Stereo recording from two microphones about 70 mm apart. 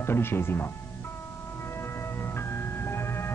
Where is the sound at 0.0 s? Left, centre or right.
Left.